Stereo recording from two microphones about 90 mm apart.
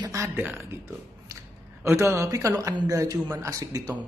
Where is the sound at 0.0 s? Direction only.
35° right (ahead or behind).